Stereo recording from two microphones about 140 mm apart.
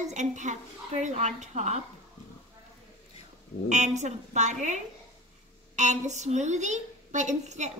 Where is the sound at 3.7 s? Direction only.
55° right (ahead or behind).